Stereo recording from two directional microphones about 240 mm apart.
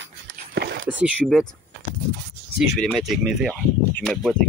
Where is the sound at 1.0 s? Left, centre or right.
Centre.